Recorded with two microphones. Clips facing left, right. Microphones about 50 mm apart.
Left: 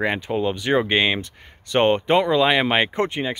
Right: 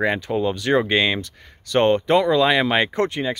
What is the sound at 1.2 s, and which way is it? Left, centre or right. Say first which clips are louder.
Speech: right 1 dB; left.